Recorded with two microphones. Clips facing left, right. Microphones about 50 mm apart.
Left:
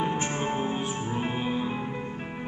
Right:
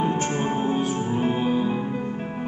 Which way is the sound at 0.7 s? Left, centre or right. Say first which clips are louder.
Right 6 dB; left.